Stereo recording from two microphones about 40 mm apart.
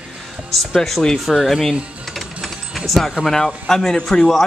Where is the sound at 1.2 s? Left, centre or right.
Centre.